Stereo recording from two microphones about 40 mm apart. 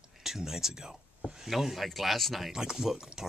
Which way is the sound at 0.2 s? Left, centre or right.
Centre.